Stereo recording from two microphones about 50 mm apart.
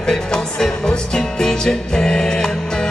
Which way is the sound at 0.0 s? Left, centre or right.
Centre.